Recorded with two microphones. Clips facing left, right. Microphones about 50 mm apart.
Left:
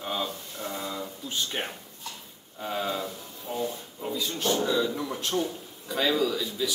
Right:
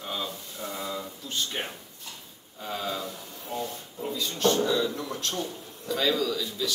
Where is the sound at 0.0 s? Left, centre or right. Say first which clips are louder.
Left 2 dB; centre.